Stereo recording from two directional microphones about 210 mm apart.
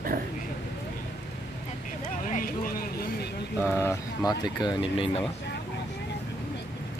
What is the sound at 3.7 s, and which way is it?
Speech, 15° left (ahead or behind).